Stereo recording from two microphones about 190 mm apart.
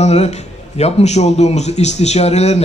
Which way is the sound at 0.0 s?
35° left (ahead or behind).